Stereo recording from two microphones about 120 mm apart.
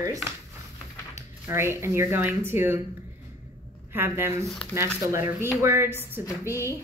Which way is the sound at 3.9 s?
20° right (ahead or behind).